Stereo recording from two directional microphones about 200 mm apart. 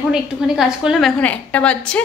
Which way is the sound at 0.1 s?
5° right (ahead or behind).